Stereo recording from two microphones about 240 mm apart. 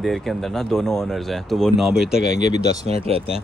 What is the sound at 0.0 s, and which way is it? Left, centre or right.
Speech, centre.